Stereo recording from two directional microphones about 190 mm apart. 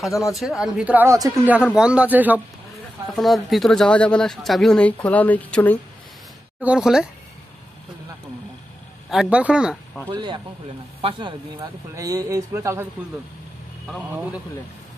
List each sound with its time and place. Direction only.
0.3 s speech: centre (ahead or behind)
6.6 s speech: 5° right (ahead or behind)
9.1 s speech: 5° right (ahead or behind)
10.1 s speech: 25° right (ahead or behind)